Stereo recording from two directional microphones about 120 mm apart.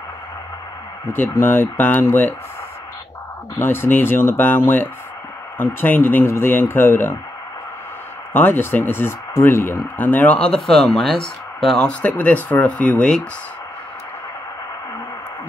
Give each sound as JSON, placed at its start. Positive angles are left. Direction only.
{"t": 1.0, "sound": "speech", "side_deg": 20}
{"t": 3.5, "sound": "speech", "side_deg": 20}
{"t": 8.3, "sound": "speech", "side_deg": 15}